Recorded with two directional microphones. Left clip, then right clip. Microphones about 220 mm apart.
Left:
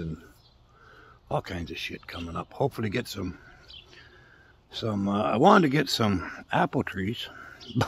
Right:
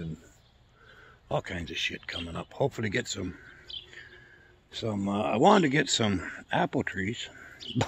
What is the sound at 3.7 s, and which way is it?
Bird, 45° right (ahead or behind).